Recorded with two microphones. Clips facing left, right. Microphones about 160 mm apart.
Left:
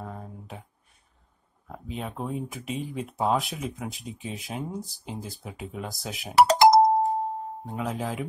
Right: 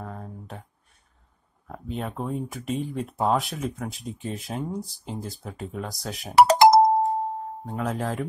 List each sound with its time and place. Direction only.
0.0 s a sound: centre (ahead or behind)
1.7 s speech: centre (ahead or behind)
6.3 s doorbell: 55° right (ahead or behind)
7.6 s speech: centre (ahead or behind)